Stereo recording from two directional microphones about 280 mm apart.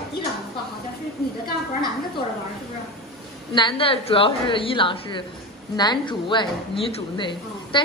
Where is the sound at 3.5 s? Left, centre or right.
Centre.